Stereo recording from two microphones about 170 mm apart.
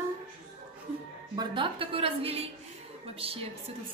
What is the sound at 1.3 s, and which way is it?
A woman's voice, 25° right (ahead or behind).